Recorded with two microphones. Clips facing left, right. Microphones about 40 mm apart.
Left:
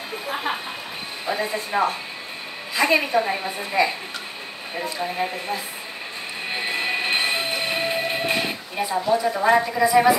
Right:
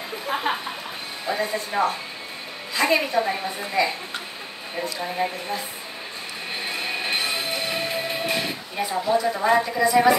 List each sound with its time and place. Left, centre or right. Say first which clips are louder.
0.3 s a woman's voice: right 2 dB; centre
5.1 s a woman's voice: even; centre
6.5 s music: left 4 dB; left
8.7 s a woman's voice: left 1 dB; centre